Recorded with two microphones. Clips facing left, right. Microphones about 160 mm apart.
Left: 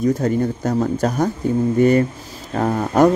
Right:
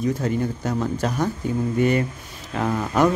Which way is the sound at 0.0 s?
40° left (ahead or behind).